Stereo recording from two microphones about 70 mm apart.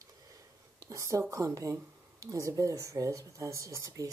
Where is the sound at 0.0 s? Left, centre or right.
Right.